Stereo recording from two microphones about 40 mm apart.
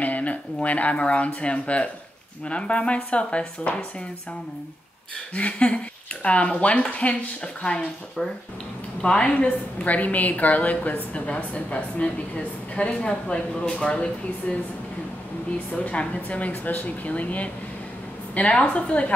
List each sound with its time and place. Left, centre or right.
0.0 s a woman's voice: left
5.3 s a woman's voice: left
9.0 s a woman's voice: left
9.3 s a woman's voice: left
11.2 s a woman's voice: left
15.8 s a woman's voice: left